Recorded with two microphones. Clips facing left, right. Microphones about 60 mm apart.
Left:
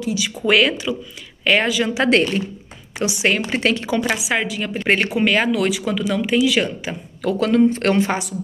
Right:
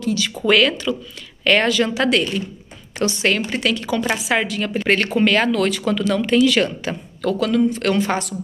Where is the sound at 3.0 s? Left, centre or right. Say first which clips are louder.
Even; centre.